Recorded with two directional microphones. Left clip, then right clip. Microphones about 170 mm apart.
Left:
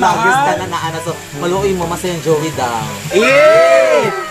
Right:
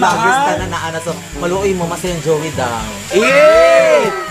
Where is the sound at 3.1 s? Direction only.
5° right (ahead or behind).